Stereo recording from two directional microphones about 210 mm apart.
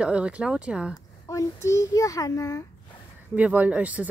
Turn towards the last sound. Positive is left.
turn(degrees=-5)  # may be behind; listen again after turning